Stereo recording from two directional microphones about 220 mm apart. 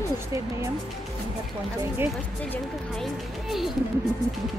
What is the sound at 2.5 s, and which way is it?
Speech, centre (ahead or behind).